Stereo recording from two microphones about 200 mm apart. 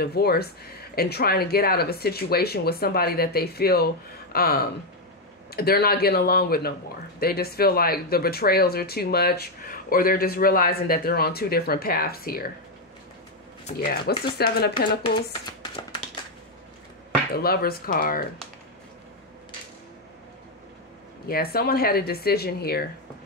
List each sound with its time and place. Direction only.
0.0 s speech: 50° left (ahead or behind)
13.7 s speech: 50° left (ahead or behind)
17.3 s speech: 50° left (ahead or behind)
21.3 s speech: 50° left (ahead or behind)